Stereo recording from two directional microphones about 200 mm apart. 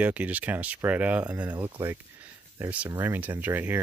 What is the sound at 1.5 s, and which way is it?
Speech, 20° right (ahead or behind).